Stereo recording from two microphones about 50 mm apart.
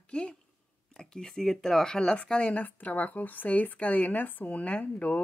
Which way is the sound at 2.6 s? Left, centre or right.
Left.